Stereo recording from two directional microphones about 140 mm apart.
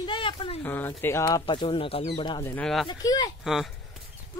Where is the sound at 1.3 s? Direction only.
35° left (ahead or behind).